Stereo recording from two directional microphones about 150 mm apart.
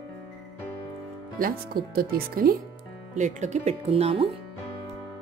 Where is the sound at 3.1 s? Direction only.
55° right (ahead or behind).